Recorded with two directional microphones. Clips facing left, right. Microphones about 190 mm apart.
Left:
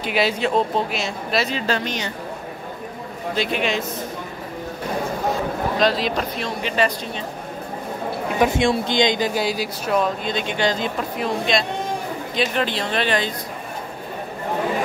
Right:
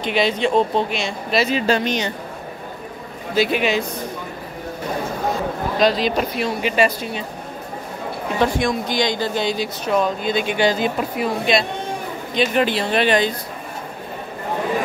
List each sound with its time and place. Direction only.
0.0 s speech: 5° left (ahead or behind)
1.7 s a woman's voice: 20° right (ahead or behind)
3.3 s speech: 5° right (ahead or behind)
5.8 s speech: centre (ahead or behind)
8.4 s speech: 25° left (ahead or behind)
9.3 s speech: 5° left (ahead or behind); by 13.3 s 15° right (ahead or behind)